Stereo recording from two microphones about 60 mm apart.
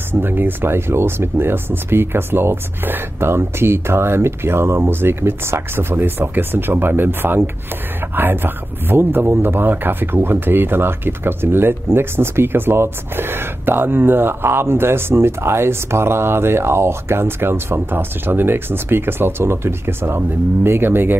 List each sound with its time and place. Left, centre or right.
0.1 s speech: right